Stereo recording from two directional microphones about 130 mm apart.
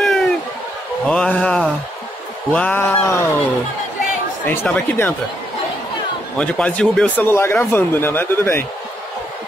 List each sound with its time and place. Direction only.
0.0 s a sound: 5° left (ahead or behind)
2.5 s speech: 15° left (ahead or behind)
4.5 s speech: 10° left (ahead or behind)
6.3 s speech: 10° left (ahead or behind)
7.2 s speech: 20° left (ahead or behind)